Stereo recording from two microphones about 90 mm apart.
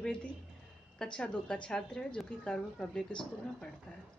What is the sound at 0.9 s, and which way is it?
A woman's voice, 10° left (ahead or behind).